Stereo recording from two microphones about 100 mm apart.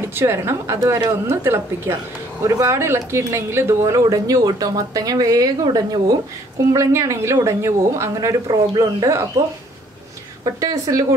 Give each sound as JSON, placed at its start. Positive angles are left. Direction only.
{"t": 0.0, "sound": "a woman's voice", "side_deg": -25}
{"t": 6.7, "sound": "a woman's voice", "side_deg": -30}
{"t": 10.4, "sound": "speech", "side_deg": -35}